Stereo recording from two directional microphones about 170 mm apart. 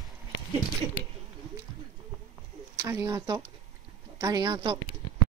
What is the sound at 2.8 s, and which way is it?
Speech, 20° right (ahead or behind).